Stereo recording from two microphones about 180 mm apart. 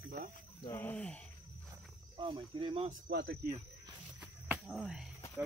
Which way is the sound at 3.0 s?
65° right (ahead or behind).